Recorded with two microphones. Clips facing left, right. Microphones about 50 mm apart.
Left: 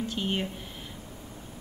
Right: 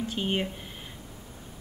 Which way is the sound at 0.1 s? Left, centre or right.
Centre.